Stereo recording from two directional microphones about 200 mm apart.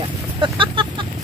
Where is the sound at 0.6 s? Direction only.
25° right (ahead or behind).